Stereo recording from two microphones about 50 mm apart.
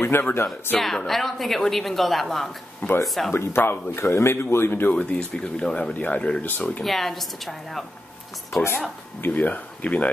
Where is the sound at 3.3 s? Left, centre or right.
Left.